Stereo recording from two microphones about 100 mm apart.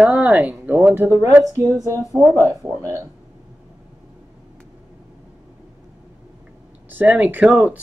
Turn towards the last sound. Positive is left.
turn(degrees=-15)  # may be behind; listen again after turning